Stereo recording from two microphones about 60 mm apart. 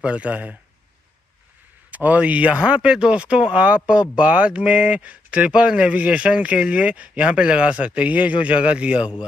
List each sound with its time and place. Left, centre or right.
0.0 s speech: right
1.9 s speech: right